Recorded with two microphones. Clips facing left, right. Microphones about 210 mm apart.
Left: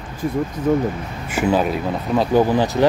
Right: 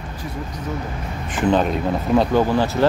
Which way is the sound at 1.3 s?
10° left (ahead or behind).